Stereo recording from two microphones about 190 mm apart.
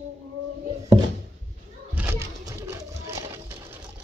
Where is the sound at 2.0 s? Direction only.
15° right (ahead or behind).